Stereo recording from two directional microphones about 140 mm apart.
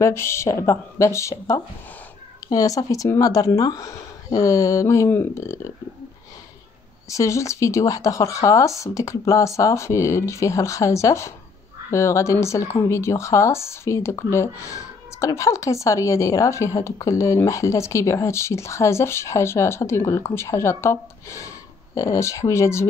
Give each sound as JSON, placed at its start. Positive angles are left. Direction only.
{"t": 0.0, "sound": "speech", "side_deg": 20}
{"t": 7.1, "sound": "speech", "side_deg": 20}